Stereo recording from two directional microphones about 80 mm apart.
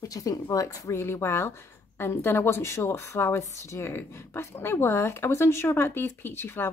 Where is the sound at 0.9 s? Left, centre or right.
Left.